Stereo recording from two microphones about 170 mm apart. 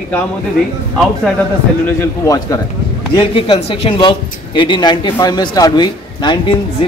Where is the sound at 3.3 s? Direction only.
35° left (ahead or behind).